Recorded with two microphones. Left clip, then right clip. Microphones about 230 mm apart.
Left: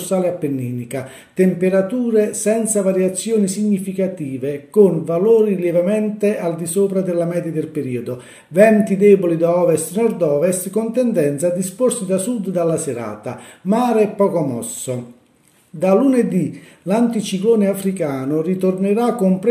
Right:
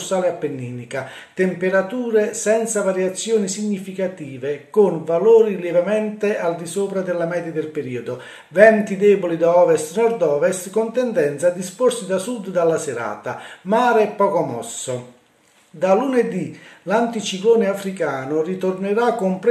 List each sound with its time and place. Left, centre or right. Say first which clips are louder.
0.1 s speech: left 1 dB; left